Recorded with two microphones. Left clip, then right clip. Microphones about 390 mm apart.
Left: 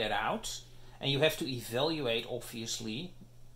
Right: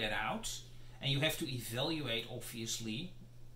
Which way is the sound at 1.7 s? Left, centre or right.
Centre.